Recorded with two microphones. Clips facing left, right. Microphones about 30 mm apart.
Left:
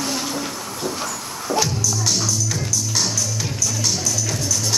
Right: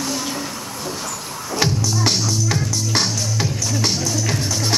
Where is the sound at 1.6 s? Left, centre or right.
Right.